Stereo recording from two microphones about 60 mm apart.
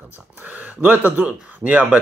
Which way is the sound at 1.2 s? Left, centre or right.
Right.